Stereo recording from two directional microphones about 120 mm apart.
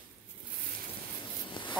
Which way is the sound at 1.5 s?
45° left (ahead or behind).